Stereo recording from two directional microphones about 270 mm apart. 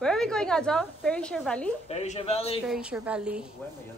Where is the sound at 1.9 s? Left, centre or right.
Left.